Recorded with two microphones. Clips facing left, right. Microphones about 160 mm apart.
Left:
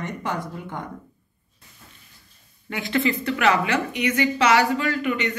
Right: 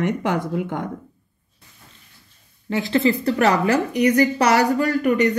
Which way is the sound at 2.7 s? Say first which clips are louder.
Right 5 dB; 35° right (ahead or behind).